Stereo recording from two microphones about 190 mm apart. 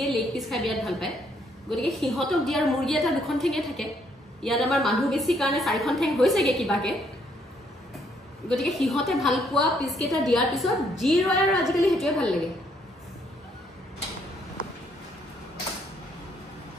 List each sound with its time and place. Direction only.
0.0 s a sound: centre (ahead or behind)
1.7 s a woman's voice: centre (ahead or behind)
8.5 s a woman's voice: centre (ahead or behind)